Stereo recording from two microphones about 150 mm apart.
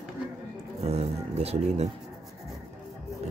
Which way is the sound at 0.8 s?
45° right (ahead or behind).